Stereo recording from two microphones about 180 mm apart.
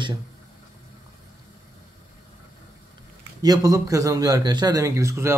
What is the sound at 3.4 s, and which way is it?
A man's voice, 20° right (ahead or behind).